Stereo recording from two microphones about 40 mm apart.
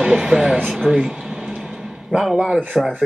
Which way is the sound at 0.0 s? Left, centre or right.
Centre.